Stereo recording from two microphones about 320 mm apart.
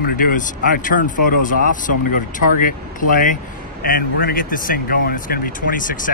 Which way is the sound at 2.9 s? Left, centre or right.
Left.